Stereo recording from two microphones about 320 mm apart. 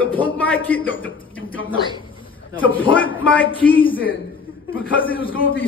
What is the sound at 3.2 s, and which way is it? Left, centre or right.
Speech, centre.